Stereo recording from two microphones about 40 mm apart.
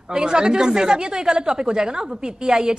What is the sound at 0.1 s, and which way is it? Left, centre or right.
A woman's voice, right.